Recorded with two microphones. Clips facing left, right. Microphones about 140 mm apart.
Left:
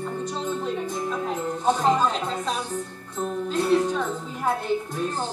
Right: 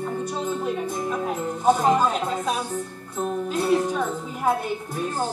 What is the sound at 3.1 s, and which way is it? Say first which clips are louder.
Speech: right 1 dB; 10° right (ahead or behind).